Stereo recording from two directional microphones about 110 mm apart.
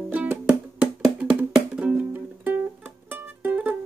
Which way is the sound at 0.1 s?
15° right (ahead or behind).